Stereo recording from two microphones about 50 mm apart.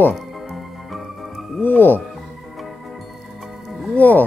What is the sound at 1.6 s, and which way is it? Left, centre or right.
Speech, left.